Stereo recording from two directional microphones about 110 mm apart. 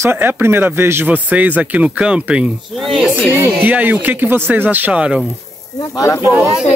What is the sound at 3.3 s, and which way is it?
Speech, 20° right (ahead or behind).